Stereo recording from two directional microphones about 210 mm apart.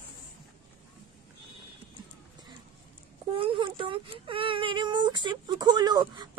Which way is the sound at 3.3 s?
25° right (ahead or behind).